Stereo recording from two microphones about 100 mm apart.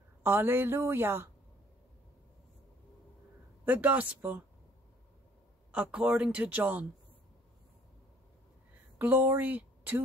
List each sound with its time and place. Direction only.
0.2 s a woman's voice: 20° right (ahead or behind)
3.6 s speech: 15° right (ahead or behind)
5.7 s speech: 10° right (ahead or behind)
8.9 s speech: 20° right (ahead or behind)